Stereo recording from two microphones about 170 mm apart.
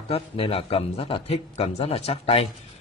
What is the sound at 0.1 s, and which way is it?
A man's voice, 35° left (ahead or behind).